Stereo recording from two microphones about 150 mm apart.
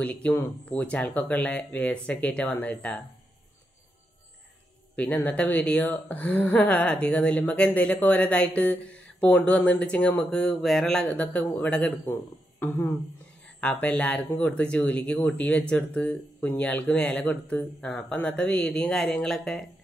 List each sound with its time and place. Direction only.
0.0 s speech: 10° left (ahead or behind)
4.9 s speech: 10° left (ahead or behind)